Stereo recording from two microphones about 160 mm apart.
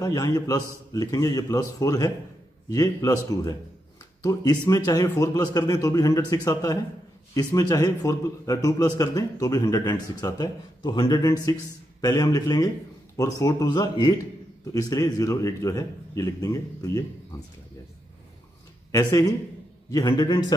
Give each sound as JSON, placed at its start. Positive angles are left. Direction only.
{"t": 0.0, "sound": "a man's voice", "side_deg": 20}
{"t": 18.9, "sound": "a man's voice", "side_deg": 20}